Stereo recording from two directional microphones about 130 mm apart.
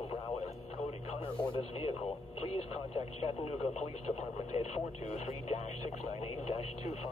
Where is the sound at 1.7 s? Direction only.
50° left (ahead or behind).